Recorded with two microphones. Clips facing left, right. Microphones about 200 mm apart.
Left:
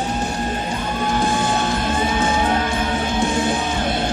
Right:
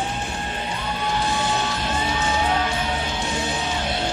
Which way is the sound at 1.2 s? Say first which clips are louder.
Left 5 dB; 50° left (ahead or behind).